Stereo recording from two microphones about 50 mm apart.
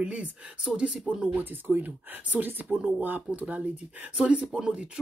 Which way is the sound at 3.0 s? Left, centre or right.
Right.